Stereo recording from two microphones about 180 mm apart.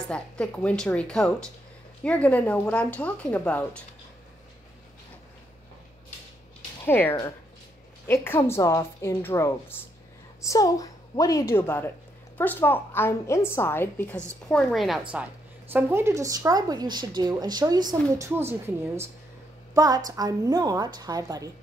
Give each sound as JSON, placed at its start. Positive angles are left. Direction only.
{"t": 0.0, "sound": "a woman's voice", "side_deg": 5}
{"t": 6.8, "sound": "a woman's voice", "side_deg": 10}
{"t": 15.7, "sound": "speech", "side_deg": -15}
{"t": 19.7, "sound": "a woman's voice", "side_deg": -20}